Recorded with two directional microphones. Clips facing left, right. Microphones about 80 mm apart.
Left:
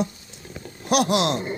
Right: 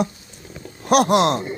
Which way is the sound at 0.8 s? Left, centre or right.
Right.